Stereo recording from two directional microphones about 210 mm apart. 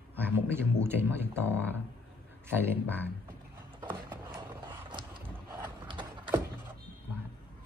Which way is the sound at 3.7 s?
20° right (ahead or behind).